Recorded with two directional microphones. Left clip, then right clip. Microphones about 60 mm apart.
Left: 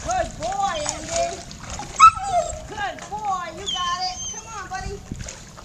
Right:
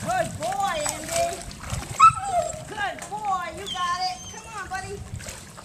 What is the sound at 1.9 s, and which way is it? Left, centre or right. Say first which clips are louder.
Dog: left 3 dB; left.